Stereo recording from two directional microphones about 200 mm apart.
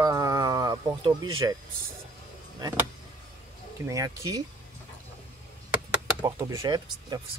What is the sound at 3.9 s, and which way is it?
Speech, 15° right (ahead or behind).